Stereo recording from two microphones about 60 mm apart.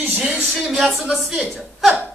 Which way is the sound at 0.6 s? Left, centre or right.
Centre.